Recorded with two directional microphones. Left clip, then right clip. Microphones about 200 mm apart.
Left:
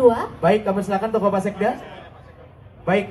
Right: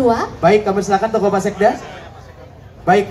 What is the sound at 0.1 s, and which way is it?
A woman's voice, 20° right (ahead or behind).